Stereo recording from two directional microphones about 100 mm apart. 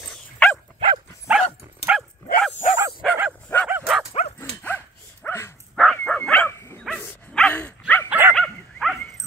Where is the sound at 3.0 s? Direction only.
10° left (ahead or behind).